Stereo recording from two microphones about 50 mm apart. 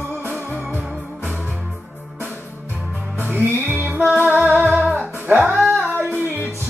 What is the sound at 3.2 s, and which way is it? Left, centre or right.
Music, right.